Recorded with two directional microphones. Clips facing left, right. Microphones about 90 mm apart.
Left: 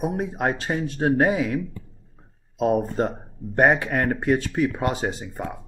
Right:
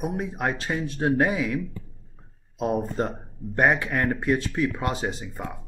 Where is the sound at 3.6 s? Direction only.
30° left (ahead or behind).